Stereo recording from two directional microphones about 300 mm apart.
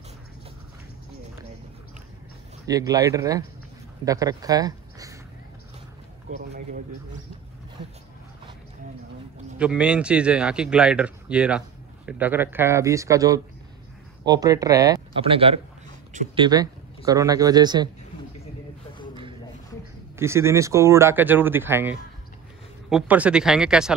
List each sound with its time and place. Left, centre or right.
2.6 s speech: centre
9.6 s a man's voice: centre; by 16.4 s right
16.4 s speech: centre
20.2 s a man's voice: centre